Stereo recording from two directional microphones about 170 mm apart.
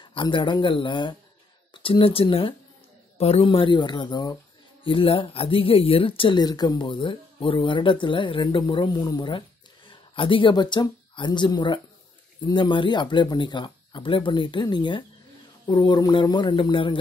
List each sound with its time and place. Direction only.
0.0 s speech: 30° left (ahead or behind)